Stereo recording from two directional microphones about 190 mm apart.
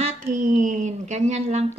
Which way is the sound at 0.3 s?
40° right (ahead or behind).